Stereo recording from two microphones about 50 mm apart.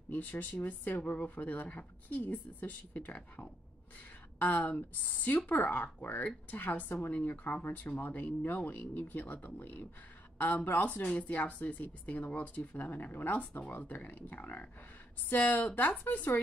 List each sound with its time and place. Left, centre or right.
0.1 s speech: left